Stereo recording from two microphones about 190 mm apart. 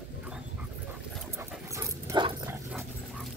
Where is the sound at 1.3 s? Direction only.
15° right (ahead or behind).